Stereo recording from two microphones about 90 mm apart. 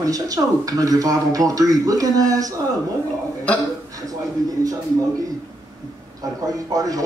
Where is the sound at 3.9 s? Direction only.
40° right (ahead or behind).